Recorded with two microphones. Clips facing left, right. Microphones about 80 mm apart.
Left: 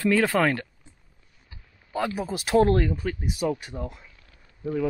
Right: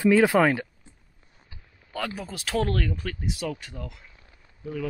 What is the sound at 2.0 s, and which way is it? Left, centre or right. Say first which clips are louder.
Speech: left 5 dB; centre.